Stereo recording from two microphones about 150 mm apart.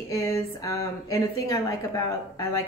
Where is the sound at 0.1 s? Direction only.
20° left (ahead or behind).